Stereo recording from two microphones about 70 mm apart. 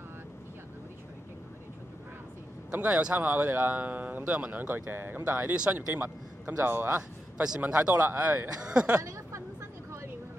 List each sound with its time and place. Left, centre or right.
2.7 s speech: right
7.0 s speech: centre
8.1 s speech: right
8.6 s speech: centre
8.9 s a sound: right